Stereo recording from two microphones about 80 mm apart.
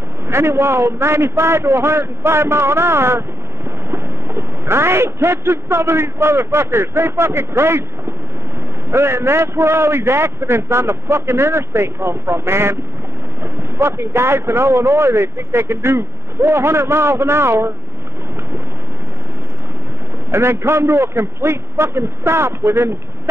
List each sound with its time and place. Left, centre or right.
0.3 s a man's voice: right
8.9 s a man's voice: right
20.2 s a man's voice: right